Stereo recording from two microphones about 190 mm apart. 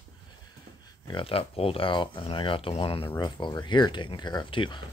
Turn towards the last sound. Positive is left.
turn(degrees=25)  # may be behind; listen again after turning